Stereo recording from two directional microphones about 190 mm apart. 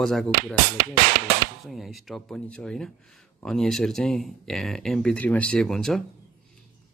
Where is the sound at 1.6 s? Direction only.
Centre (ahead or behind).